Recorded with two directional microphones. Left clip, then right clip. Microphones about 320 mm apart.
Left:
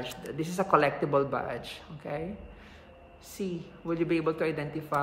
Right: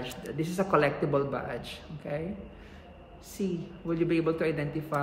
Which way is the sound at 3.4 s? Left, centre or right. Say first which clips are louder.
Right 2 dB; centre.